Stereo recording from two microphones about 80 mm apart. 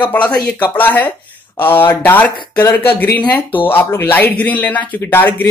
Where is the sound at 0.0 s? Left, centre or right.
Centre.